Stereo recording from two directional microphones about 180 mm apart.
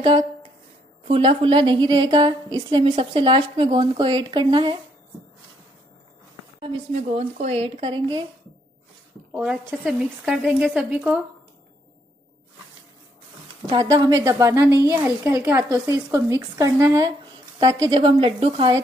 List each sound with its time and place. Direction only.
1.0 s a woman's voice: 30° right (ahead or behind)
6.6 s speech: 40° right (ahead or behind)
9.3 s speech: 5° right (ahead or behind)
13.7 s a woman's voice: 20° right (ahead or behind)